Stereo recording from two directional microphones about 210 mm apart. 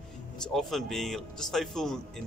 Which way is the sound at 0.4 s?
Centre (ahead or behind).